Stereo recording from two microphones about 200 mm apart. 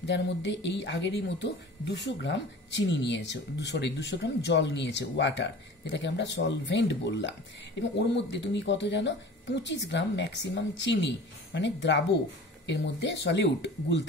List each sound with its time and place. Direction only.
0.0 s speech: 60° left (ahead or behind)